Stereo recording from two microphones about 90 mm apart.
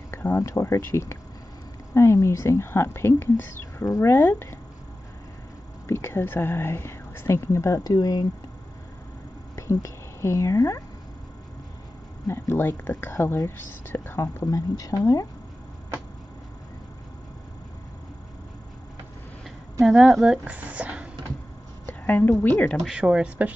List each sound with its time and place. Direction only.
0.1 s a sound: 25° left (ahead or behind)
0.4 s a woman's voice: 35° left (ahead or behind)
5.9 s a woman's voice: 30° left (ahead or behind); by 8.3 s 45° left (ahead or behind)
9.6 s speech: 35° left (ahead or behind)
12.3 s a woman's voice: 30° left (ahead or behind)
14.4 s speech: 40° left (ahead or behind)
19.4 s a sound: centre (ahead or behind)
20.4 s speech: 15° right (ahead or behind)
21.8 s a sound: 20° left (ahead or behind)
22.4 s a woman's voice: 20° left (ahead or behind)
22.8 s speech: 10° right (ahead or behind)